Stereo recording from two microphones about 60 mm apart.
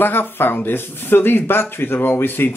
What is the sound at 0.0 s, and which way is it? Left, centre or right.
Speech, left.